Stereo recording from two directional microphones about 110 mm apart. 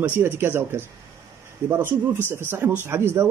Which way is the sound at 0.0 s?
20° right (ahead or behind).